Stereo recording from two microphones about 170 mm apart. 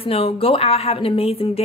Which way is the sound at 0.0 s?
35° left (ahead or behind).